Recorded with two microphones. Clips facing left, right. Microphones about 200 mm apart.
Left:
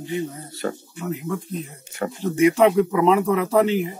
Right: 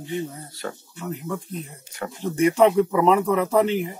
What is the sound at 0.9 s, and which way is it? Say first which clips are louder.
Speech: left 3 dB; 10° left (ahead or behind).